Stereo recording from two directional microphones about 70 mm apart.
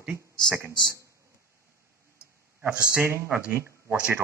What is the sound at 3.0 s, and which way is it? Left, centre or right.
Speech, right.